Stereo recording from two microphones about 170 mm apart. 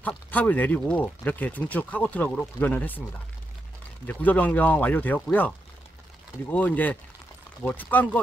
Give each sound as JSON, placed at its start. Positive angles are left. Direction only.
{"t": 0.0, "sound": "speech", "side_deg": 10}
{"t": 4.0, "sound": "speech", "side_deg": 10}
{"t": 6.5, "sound": "speech", "side_deg": 10}